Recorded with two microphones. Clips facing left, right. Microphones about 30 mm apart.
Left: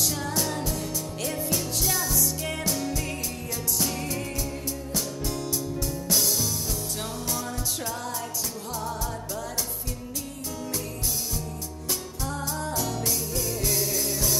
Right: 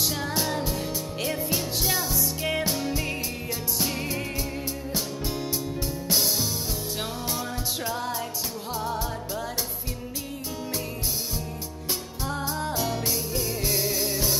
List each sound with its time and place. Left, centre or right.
0.0 s music: right
12.3 s music: right